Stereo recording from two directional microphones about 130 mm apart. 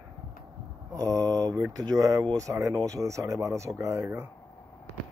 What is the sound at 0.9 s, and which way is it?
Speech, 25° right (ahead or behind).